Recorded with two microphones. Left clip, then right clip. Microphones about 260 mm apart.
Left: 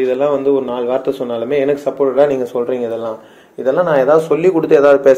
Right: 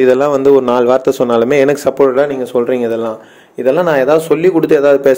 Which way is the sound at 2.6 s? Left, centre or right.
Right.